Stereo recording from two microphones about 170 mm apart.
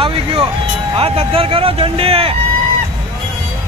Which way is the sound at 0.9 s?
35° right (ahead or behind).